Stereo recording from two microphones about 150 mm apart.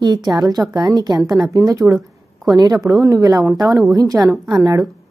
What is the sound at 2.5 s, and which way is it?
A woman's voice, 25° right (ahead or behind).